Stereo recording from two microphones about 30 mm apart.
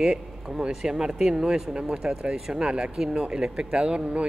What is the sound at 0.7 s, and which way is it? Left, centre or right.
Speech, centre.